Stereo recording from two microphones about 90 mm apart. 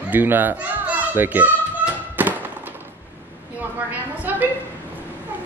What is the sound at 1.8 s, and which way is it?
Thunk, 20° right (ahead or behind).